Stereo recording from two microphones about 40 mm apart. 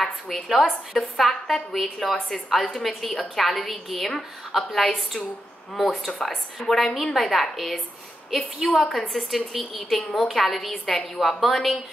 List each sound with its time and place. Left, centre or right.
0.0 s a woman's voice: centre